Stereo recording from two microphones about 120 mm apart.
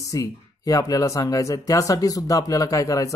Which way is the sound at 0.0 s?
25° left (ahead or behind).